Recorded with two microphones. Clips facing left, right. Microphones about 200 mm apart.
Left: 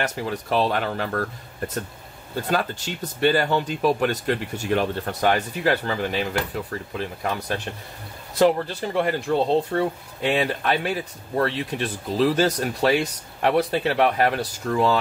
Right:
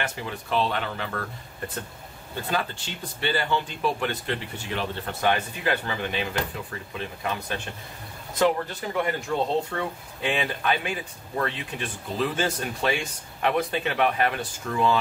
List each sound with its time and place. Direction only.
0.0 s speech: 40° left (ahead or behind)
2.5 s speech: 40° left (ahead or behind)